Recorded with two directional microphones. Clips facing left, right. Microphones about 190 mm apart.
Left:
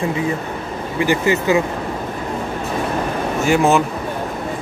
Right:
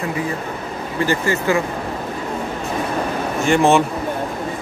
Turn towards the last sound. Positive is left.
turn(degrees=5)  # may be behind; listen again after turning